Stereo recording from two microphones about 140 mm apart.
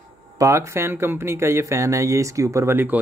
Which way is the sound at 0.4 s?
20° right (ahead or behind).